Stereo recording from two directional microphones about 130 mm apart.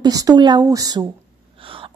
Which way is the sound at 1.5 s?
45° right (ahead or behind).